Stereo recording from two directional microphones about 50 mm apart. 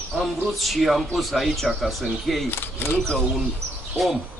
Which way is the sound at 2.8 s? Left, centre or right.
Left.